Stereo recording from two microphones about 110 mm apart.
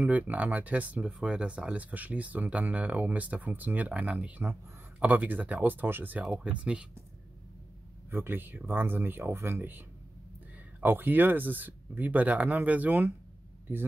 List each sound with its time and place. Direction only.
0.0 s speech: 15° right (ahead or behind)
8.1 s speech: 20° right (ahead or behind)